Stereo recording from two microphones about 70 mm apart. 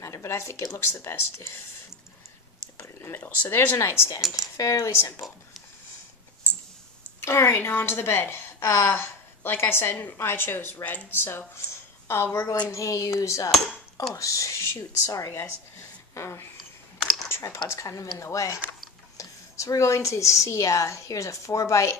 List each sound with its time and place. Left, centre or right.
0.0 s a woman's voice: left
2.8 s speech: left
3.7 s a woman's voice: left
7.2 s a woman's voice: left
12.6 s a woman's voice: left